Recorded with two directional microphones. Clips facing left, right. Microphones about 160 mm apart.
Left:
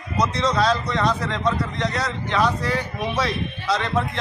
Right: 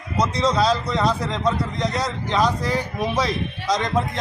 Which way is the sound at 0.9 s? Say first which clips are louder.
Right 1 dB; 35° right (ahead or behind).